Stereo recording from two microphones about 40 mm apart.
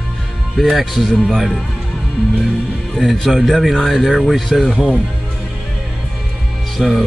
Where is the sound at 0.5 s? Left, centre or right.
Centre.